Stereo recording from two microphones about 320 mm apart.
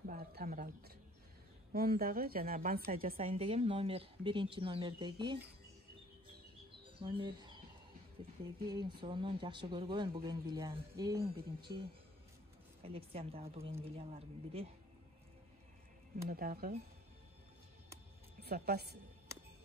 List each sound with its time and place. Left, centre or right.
0.0 s a sound: right
1.7 s a woman's voice: right
7.0 s speech: centre
8.6 s a woman's voice: centre
12.8 s a woman's voice: centre
16.3 s speech: right
18.4 s a woman's voice: right